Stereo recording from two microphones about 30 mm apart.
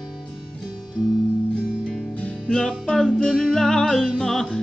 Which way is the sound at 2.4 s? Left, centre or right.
Left.